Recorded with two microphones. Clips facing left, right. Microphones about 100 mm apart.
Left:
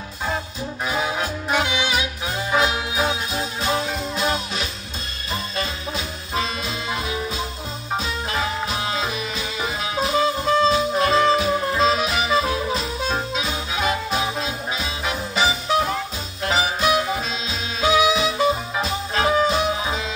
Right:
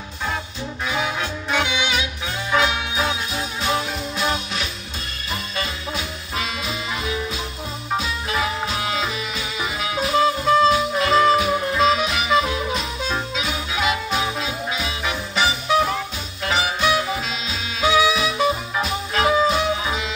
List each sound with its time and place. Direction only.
0.8 s music: 35° left (ahead or behind)
8.0 s music: 30° left (ahead or behind)
17.5 s swing music: 30° left (ahead or behind)
19.5 s music: 30° left (ahead or behind)